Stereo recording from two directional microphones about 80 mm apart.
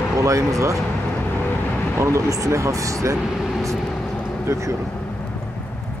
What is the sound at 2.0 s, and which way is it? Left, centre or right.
Speech, right.